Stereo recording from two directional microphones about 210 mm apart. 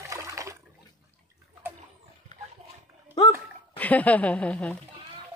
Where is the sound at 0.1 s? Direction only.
15° right (ahead or behind).